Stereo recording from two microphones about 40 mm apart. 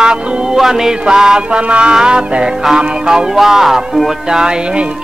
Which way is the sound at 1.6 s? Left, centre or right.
Right.